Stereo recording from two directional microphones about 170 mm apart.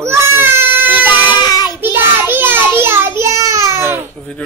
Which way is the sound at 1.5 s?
25° left (ahead or behind).